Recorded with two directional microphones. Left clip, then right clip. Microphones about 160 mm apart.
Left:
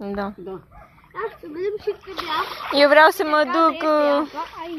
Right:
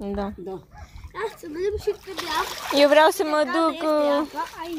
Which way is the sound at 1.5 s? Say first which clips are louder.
Even; 20° right (ahead or behind).